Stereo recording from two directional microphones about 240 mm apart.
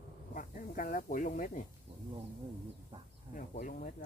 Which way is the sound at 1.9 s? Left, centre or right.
Right.